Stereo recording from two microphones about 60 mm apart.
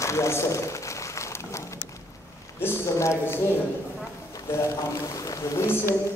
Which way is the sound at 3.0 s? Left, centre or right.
Left.